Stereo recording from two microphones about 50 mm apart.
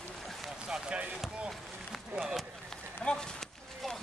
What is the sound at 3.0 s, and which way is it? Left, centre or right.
Speech, centre.